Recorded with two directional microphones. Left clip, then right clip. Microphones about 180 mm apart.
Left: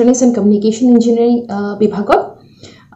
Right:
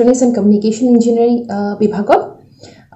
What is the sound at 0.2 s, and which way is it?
A woman's voice, 5° right (ahead or behind).